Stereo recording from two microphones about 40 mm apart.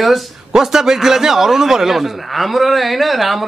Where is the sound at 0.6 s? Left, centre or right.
Centre.